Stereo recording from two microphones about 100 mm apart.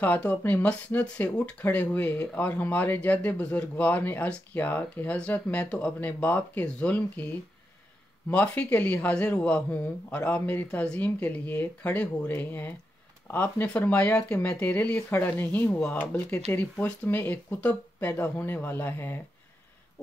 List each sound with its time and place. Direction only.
0.0 s speech: 15° left (ahead or behind)
8.3 s speech: 15° left (ahead or behind)